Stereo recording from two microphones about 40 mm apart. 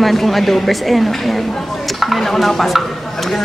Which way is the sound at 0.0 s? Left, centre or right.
Centre.